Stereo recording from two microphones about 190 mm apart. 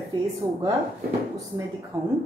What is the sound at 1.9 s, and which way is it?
Speech, 15° right (ahead or behind).